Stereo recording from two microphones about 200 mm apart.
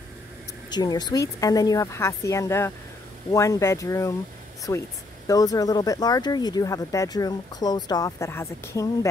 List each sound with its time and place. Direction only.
0.7 s speech: 20° left (ahead or behind)